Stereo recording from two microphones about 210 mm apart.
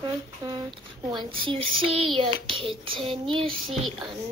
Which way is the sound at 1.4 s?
25° right (ahead or behind).